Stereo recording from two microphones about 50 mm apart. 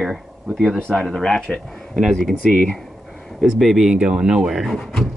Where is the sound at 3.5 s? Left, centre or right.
Centre.